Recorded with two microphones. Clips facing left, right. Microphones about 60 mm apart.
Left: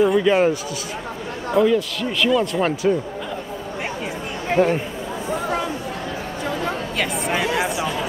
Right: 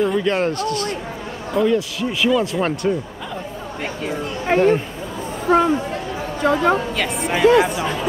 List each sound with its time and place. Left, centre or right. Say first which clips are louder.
0.0 s speech: left 3 dB; centre
4.5 s speech: right 2 dB; right
6.4 s a sound: right 10 dB; right
7.0 s speech: right 4 dB; centre